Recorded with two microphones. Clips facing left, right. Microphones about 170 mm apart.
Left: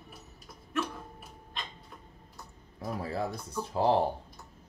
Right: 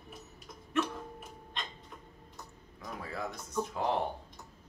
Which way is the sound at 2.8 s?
35° left (ahead or behind).